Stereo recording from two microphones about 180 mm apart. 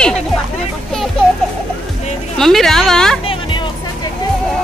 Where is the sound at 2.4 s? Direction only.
Centre (ahead or behind).